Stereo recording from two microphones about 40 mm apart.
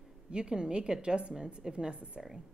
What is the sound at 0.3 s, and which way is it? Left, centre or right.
A woman's voice, right.